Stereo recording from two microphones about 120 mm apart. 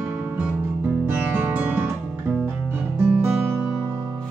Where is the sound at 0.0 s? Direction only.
10° right (ahead or behind).